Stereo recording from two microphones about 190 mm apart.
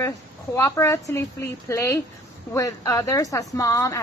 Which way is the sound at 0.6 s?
15° left (ahead or behind).